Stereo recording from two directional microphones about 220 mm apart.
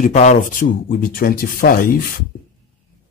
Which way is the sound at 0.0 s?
35° left (ahead or behind).